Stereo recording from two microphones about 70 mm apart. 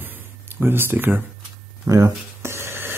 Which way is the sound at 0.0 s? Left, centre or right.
Right.